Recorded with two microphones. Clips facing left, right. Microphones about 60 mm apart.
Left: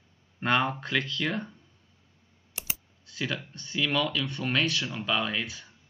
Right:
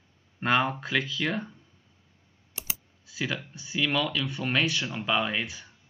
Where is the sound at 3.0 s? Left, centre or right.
Centre.